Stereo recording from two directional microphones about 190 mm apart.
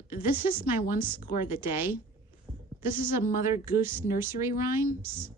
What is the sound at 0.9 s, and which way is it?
Speech, 10° right (ahead or behind).